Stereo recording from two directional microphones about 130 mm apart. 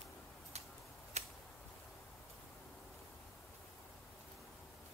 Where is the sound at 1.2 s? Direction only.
60° right (ahead or behind).